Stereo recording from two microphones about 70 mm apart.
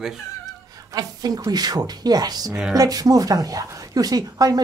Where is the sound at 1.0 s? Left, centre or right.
Right.